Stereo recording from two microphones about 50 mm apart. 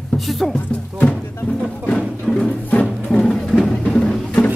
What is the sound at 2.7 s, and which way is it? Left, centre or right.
Music, left.